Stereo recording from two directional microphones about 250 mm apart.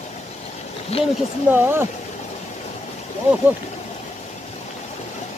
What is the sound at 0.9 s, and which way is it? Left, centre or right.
Speech, left.